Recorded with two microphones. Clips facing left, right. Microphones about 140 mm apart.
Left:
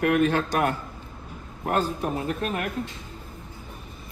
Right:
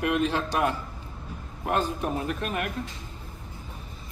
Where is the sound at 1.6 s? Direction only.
35° left (ahead or behind).